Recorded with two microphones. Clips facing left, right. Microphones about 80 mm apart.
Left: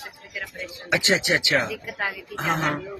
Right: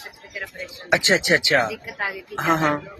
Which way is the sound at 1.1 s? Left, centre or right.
Right.